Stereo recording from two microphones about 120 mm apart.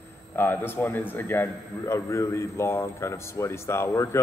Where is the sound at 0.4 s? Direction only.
15° left (ahead or behind).